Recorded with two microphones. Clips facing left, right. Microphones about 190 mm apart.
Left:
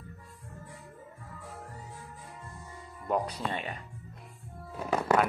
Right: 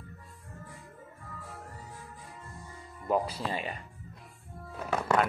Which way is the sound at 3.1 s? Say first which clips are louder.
Right 1 dB; centre (ahead or behind).